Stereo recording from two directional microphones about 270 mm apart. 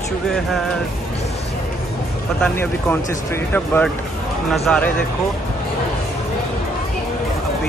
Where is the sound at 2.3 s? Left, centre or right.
Centre.